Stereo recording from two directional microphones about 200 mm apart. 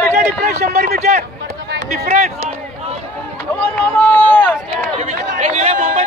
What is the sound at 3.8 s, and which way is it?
Speech, 10° left (ahead or behind).